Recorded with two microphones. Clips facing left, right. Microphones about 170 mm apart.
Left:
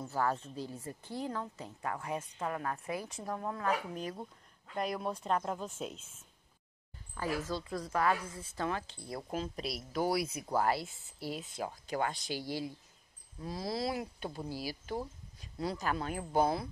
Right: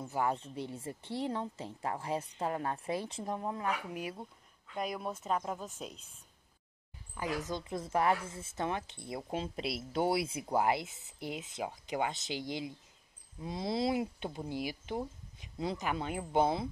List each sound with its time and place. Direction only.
0.1 s a woman's voice: 15° right (ahead or behind)
3.9 s a woman's voice: 5° right (ahead or behind)
7.2 s a woman's voice: 15° right (ahead or behind)